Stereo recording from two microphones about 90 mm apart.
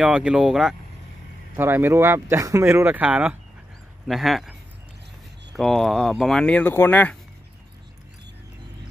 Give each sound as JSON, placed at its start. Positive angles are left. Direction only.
{"t": 0.0, "sound": "speech", "side_deg": -10}
{"t": 1.6, "sound": "speech", "side_deg": -25}
{"t": 4.1, "sound": "speech", "side_deg": 0}
{"t": 5.6, "sound": "speech", "side_deg": 5}
{"t": 6.6, "sound": "speech", "side_deg": 25}